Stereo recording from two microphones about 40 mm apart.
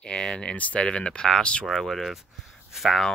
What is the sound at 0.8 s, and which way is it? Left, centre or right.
Speech, left.